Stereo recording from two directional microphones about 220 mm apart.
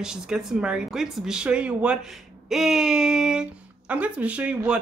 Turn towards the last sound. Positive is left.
turn(degrees=-5)  # may be behind; listen again after turning